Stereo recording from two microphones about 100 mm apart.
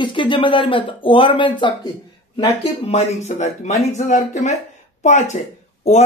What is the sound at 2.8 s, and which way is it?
Speech, 90° left.